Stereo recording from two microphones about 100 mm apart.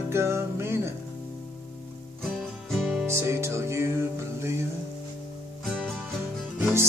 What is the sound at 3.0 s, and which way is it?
Music, 25° right (ahead or behind).